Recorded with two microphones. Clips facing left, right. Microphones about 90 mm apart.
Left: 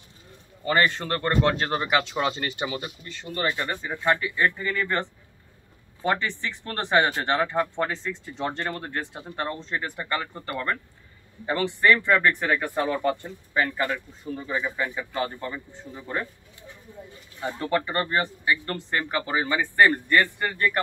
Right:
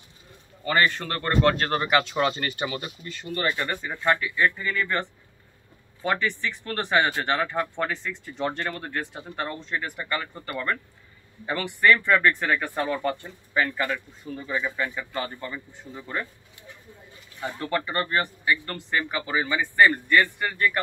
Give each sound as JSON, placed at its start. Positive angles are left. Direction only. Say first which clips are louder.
{"t": 0.7, "sound": "speech", "louder": "left 1 dB", "side_deg": 25}
{"t": 1.5, "sound": "speech", "louder": "right 1 dB", "side_deg": 10}
{"t": 3.0, "sound": "speech", "louder": "right 1 dB", "side_deg": 20}
{"t": 6.0, "sound": "speech", "louder": "even", "side_deg": 30}
{"t": 11.9, "sound": "speech", "louder": "right 1 dB", "side_deg": 15}
{"t": 17.4, "sound": "speech", "louder": "left 2 dB", "side_deg": 25}
{"t": 18.8, "sound": "speech", "louder": "even", "side_deg": 40}